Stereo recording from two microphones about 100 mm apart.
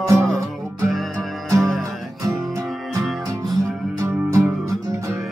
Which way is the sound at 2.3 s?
35° right (ahead or behind).